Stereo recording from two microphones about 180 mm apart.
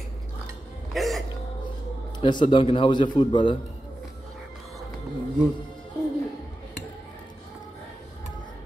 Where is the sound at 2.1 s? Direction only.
25° left (ahead or behind).